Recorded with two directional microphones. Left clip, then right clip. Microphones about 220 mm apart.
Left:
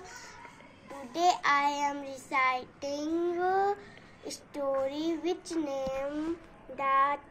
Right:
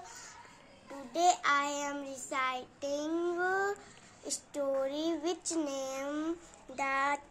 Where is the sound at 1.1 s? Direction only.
10° right (ahead or behind).